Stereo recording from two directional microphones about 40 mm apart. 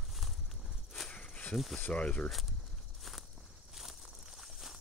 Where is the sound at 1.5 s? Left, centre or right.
Centre.